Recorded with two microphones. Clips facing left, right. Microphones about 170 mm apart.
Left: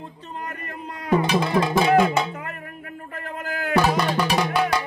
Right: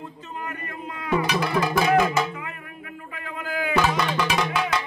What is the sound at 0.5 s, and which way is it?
Music, 40° left (ahead or behind).